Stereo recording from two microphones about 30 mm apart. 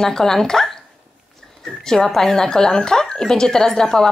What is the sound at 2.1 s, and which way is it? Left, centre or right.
Speech, centre.